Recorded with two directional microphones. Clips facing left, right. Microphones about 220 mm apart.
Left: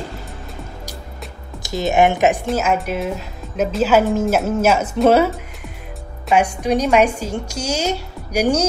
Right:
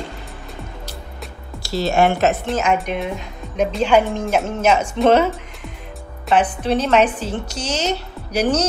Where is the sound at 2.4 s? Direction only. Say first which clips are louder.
Even; 5° left (ahead or behind).